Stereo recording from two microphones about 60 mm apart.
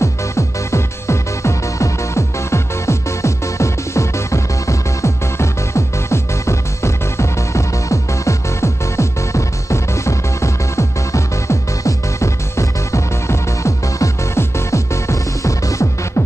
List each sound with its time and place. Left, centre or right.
0.0 s music: left